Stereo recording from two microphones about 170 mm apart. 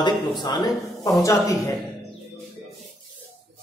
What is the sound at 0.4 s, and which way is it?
Speech, 25° left (ahead or behind).